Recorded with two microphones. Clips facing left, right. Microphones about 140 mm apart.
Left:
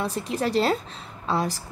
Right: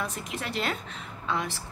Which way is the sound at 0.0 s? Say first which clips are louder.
Left 8 dB; 35° left (ahead or behind).